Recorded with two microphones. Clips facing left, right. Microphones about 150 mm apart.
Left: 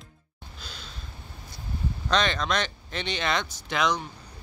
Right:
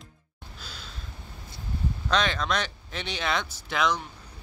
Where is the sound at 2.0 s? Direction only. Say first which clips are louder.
Left 1 dB; 5° right (ahead or behind).